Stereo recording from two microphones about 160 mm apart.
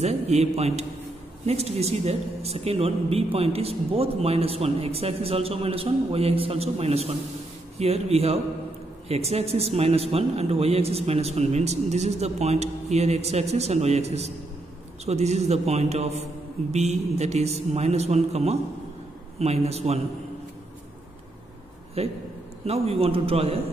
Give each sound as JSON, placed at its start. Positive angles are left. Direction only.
{"t": 0.0, "sound": "a man's voice", "side_deg": -45}
{"t": 22.0, "sound": "speech", "side_deg": -40}